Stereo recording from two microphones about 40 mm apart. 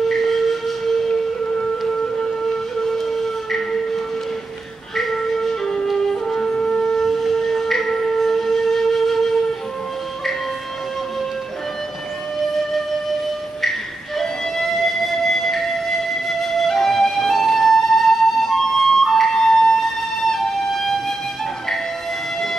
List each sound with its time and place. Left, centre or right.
0.1 s steam whistle: centre
2.8 s music: centre
7.0 s wind instrument: centre
13.6 s music: centre